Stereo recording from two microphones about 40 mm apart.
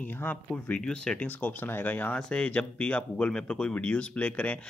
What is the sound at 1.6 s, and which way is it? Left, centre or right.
Speech, left.